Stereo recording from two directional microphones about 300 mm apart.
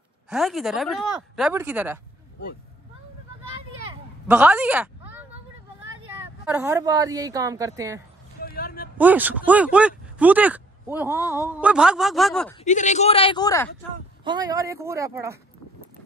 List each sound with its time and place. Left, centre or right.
0.3 s speech: centre
4.3 s speech: centre
6.4 s speech: centre
8.4 s a sound: left
8.9 s speech: centre
12.5 s a man's voice: left
14.2 s speech: centre